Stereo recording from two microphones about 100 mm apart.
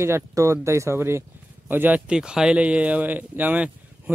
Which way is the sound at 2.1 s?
5° right (ahead or behind).